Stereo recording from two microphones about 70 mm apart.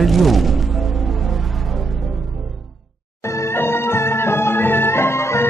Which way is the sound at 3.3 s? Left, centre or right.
Left.